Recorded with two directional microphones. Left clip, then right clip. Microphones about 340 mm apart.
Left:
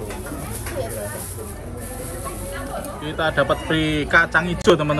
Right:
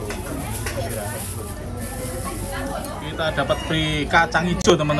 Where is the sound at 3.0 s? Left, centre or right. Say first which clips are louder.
Left 3 dB; centre.